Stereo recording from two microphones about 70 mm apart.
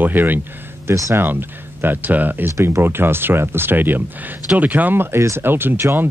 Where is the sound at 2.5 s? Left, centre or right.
Right.